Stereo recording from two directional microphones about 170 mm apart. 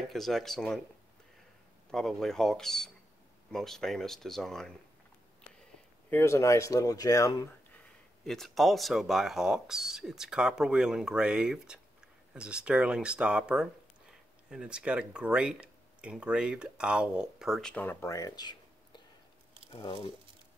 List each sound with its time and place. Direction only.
0.1 s speech: centre (ahead or behind)
1.9 s speech: centre (ahead or behind)
6.0 s speech: 15° left (ahead or behind)
7.7 s speech: centre (ahead or behind); by 20.1 s 30° left (ahead or behind)